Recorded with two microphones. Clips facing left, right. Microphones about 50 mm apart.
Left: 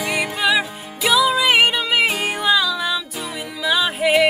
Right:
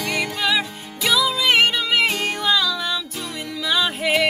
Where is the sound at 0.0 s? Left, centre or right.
Centre.